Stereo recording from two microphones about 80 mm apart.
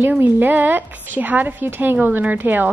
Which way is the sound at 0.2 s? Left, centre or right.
Right.